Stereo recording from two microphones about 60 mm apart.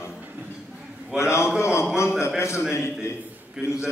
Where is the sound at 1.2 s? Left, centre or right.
Left.